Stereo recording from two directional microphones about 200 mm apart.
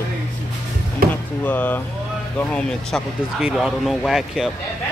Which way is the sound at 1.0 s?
50° right (ahead or behind).